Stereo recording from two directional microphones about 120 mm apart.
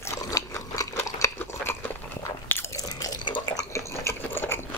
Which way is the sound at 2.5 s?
20° left (ahead or behind).